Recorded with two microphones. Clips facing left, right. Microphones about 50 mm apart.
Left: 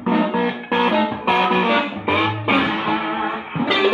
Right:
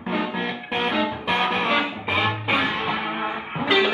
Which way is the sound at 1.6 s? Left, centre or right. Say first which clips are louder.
Left 4 dB; left.